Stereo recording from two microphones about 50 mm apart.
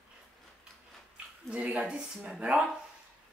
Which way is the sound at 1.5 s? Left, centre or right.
Right.